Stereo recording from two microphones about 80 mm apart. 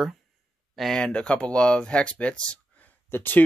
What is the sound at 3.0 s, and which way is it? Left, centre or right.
Speech, left.